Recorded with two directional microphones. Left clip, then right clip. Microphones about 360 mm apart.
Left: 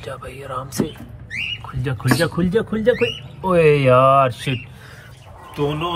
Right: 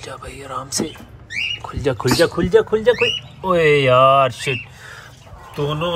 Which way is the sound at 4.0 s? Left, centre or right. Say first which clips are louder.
Right 1 dB; centre.